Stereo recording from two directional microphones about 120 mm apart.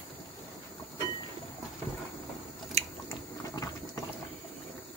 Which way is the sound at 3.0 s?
25° left (ahead or behind).